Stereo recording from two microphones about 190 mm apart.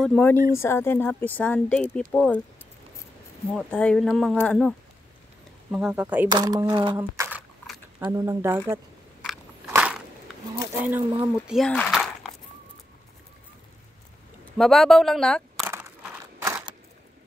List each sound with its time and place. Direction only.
0.0 s speech: 5° left (ahead or behind)
3.5 s speech: 5° left (ahead or behind)
6.3 s speech: 20° right (ahead or behind)
7.0 s a sound: 10° right (ahead or behind)
8.0 s speech: 15° right (ahead or behind)
9.7 s crushing: 10° right (ahead or behind)
10.9 s speech: 10° right (ahead or behind)
14.6 s speech: centre (ahead or behind)
15.7 s a sound: 10° right (ahead or behind)